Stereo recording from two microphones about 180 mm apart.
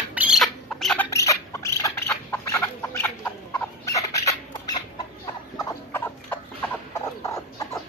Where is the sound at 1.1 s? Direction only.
15° left (ahead or behind).